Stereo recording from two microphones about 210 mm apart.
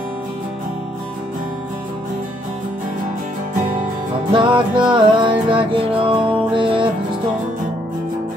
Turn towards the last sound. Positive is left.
turn(degrees=-25)  # may be behind; listen again after turning